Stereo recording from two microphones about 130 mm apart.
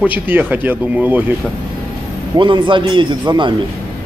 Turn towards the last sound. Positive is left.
turn(degrees=-35)  # may be behind; listen again after turning